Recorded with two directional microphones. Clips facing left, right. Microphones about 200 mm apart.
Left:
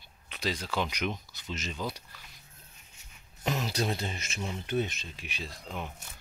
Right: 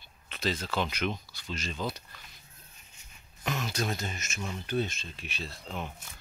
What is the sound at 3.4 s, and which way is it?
Speech, 35° left (ahead or behind).